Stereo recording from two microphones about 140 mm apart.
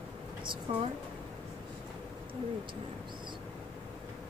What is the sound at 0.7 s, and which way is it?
Speech, 35° right (ahead or behind).